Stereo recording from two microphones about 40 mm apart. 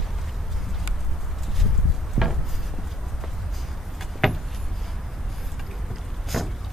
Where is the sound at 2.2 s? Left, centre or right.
Centre.